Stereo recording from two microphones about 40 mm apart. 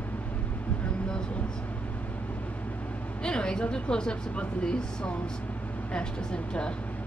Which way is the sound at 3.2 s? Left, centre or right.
Left.